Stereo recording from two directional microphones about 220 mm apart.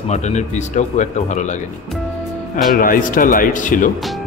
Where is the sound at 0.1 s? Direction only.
30° left (ahead or behind).